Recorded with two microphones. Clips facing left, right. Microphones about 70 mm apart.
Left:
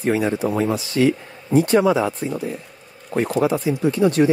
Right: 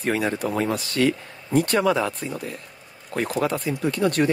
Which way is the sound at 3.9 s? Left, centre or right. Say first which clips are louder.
Left 4 dB; right.